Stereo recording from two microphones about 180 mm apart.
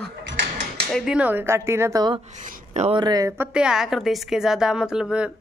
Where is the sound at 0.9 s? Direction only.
5° right (ahead or behind); by 2.2 s 25° right (ahead or behind).